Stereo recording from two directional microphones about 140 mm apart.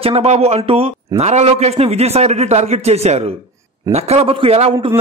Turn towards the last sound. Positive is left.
turn(degrees=-45)  # may be behind; listen again after turning